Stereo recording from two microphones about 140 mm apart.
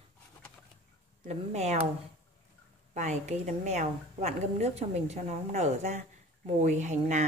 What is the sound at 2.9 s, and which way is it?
A woman's voice, 55° right (ahead or behind).